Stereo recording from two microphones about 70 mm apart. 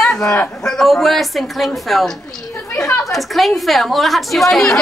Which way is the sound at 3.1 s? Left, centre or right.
Centre.